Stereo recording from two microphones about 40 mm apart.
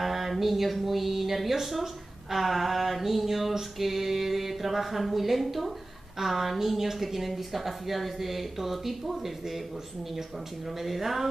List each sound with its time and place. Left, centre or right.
0.0 s mantra: centre
10.8 s mantra: centre